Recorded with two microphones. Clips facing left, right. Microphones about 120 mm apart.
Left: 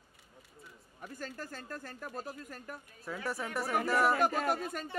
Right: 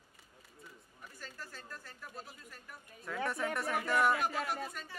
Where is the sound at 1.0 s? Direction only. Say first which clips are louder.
Left 8 dB; 50° left (ahead or behind).